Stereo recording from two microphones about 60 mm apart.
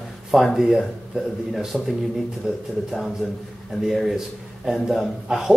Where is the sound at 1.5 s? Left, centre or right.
Centre.